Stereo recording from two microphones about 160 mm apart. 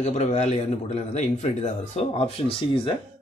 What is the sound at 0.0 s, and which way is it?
A man's voice, 45° left (ahead or behind).